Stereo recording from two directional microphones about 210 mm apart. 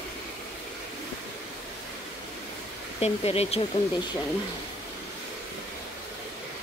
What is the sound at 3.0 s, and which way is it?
Speech, 30° left (ahead or behind).